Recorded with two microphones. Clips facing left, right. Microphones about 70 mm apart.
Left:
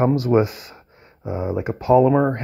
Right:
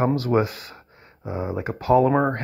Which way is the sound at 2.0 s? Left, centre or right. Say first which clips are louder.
Left 3 dB; centre.